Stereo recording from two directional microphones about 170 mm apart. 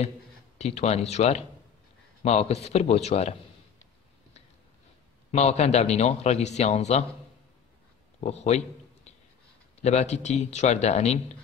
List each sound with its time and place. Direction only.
0.6 s a man's voice: 40° left (ahead or behind)
5.3 s a man's voice: 40° left (ahead or behind)
8.2 s a sound: 40° left (ahead or behind)
9.8 s a man's voice: 40° left (ahead or behind)